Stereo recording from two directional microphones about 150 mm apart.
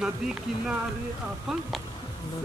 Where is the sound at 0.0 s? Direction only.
5° right (ahead or behind).